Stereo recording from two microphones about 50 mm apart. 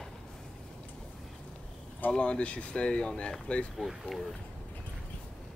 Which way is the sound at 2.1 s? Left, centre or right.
Left.